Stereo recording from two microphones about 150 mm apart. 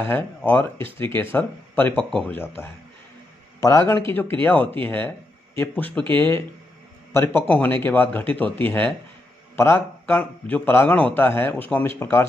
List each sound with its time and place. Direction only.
0.0 s a man's voice: 10° left (ahead or behind)
4.1 s a man's voice: 15° left (ahead or behind)